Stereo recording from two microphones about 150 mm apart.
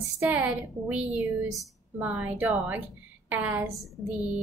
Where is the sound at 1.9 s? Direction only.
15° right (ahead or behind).